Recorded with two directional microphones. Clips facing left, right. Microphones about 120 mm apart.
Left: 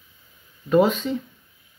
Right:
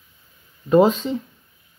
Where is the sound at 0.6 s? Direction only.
30° right (ahead or behind).